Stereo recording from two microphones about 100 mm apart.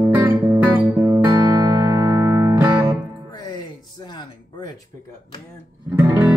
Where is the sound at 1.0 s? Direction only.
45° right (ahead or behind).